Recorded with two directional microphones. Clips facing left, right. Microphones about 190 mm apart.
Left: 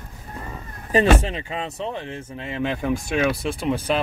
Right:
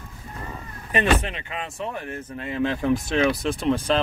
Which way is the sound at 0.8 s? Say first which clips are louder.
Left 4 dB; 30° left (ahead or behind).